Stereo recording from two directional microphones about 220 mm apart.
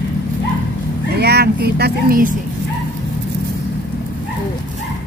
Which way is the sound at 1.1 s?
45° right (ahead or behind).